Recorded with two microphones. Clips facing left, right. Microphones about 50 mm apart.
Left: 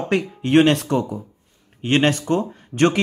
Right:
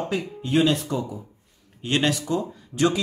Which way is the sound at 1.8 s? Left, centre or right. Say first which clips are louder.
Left 5 dB; left.